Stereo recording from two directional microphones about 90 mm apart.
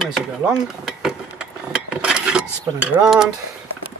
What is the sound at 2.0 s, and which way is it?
Cutlery, 10° right (ahead or behind).